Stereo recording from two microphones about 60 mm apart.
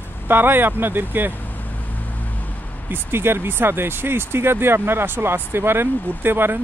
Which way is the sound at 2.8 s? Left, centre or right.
Right.